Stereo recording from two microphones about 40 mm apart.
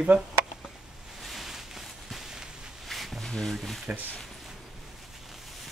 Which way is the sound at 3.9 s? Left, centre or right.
Right.